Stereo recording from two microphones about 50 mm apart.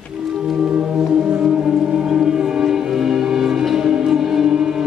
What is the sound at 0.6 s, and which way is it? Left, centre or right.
Music, right.